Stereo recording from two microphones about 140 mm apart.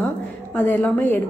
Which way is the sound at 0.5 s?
10° left (ahead or behind).